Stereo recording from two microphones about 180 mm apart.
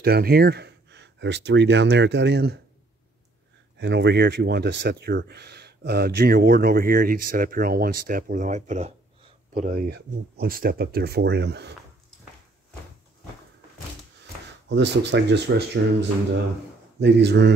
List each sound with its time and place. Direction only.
0.0 s speech: 60° right (ahead or behind)
3.7 s speech: 75° right (ahead or behind); by 9.7 s 40° right (ahead or behind)
9.7 s speech: 65° right (ahead or behind)
14.7 s speech: 75° right (ahead or behind)
17.0 s speech: 70° right (ahead or behind)